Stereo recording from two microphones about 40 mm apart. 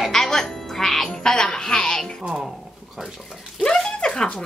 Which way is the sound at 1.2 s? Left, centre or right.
Centre.